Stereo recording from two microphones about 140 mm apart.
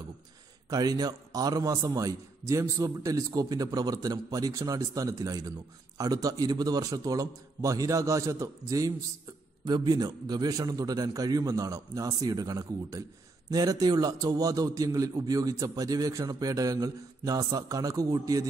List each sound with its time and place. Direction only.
0.7 s a man's voice: 30° right (ahead or behind)